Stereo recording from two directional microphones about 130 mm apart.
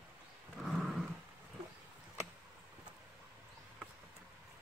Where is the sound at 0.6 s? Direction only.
Centre (ahead or behind).